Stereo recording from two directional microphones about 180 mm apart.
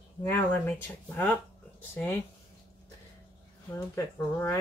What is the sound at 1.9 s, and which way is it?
Speech, 10° left (ahead or behind).